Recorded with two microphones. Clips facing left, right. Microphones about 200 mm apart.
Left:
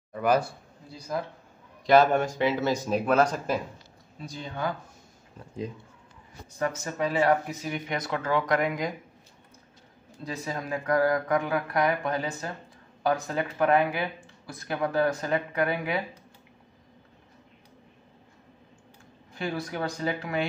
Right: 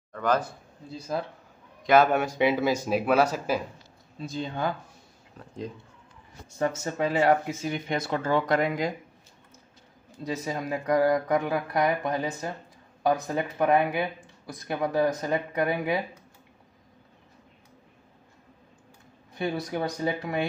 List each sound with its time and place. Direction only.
0.1 s a man's voice: 10° left (ahead or behind)
0.9 s speech: 25° right (ahead or behind)
1.9 s speech: 5° right (ahead or behind)
4.2 s speech: 30° right (ahead or behind)
6.6 s speech: 25° right (ahead or behind)
10.3 s speech: 20° right (ahead or behind)
19.4 s speech: 20° right (ahead or behind)